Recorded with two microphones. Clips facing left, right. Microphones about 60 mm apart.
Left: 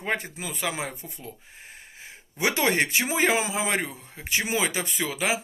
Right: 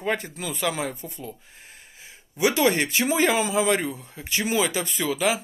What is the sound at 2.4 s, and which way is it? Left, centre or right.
Speech, left.